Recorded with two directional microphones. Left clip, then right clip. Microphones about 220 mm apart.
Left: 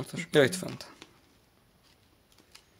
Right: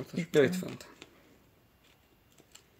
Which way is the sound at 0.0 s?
30° left (ahead or behind).